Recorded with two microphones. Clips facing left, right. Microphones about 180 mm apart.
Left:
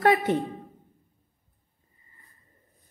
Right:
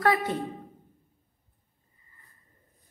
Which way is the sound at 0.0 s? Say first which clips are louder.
Left 4 dB; 25° left (ahead or behind).